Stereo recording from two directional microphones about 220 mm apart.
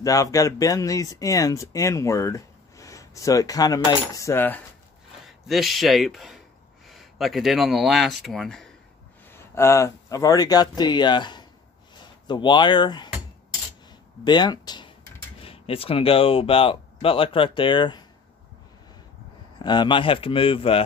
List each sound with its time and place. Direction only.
0.0 s speech: 15° left (ahead or behind)
5.2 s a man's voice: centre (ahead or behind)
9.3 s speech: 10° left (ahead or behind)
14.2 s speech: 20° left (ahead or behind)
19.6 s speech: 20° left (ahead or behind)